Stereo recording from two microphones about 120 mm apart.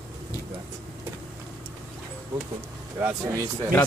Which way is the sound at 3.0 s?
25° right (ahead or behind).